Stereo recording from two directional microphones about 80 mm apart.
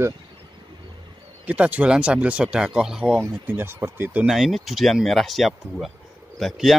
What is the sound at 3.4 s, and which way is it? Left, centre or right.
Speech, right.